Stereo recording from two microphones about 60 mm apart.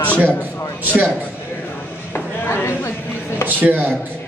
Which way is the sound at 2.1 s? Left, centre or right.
Left.